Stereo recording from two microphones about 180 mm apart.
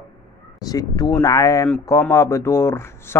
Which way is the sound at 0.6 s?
20° left (ahead or behind).